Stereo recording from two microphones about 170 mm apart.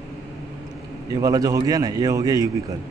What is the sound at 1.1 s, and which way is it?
A man's voice, 20° right (ahead or behind).